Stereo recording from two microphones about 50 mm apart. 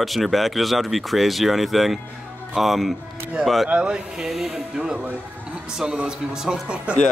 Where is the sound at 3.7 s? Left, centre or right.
Centre.